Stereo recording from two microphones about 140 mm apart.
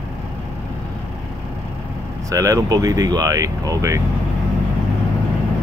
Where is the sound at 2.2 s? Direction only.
25° right (ahead or behind).